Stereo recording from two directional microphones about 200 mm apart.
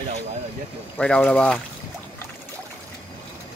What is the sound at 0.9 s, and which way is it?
Speech, 5° left (ahead or behind).